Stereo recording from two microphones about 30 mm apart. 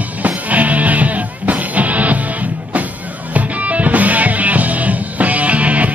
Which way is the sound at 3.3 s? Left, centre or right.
Right.